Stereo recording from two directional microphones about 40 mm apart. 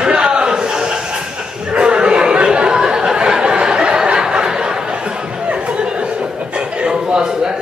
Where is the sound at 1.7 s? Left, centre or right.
Right.